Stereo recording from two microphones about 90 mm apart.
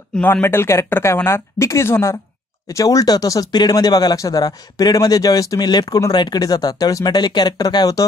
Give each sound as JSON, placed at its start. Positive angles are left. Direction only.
{"t": 0.1, "sound": "speech", "side_deg": 20}
{"t": 2.7, "sound": "speech", "side_deg": 40}